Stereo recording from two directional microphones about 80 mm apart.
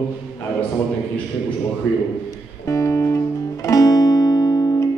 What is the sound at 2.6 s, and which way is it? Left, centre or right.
Music, left.